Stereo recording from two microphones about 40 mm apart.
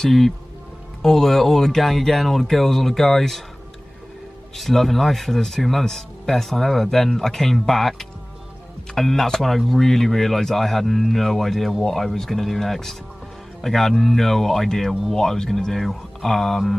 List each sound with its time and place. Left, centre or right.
1.0 s speech: centre
4.6 s speech: centre